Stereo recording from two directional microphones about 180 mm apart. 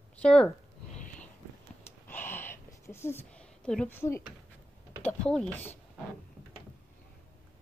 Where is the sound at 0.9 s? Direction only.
45° left (ahead or behind).